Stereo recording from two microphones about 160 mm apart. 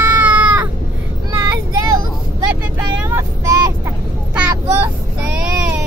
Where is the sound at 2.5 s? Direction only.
15° right (ahead or behind).